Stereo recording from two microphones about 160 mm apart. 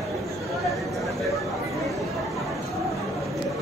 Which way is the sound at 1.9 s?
Centre (ahead or behind).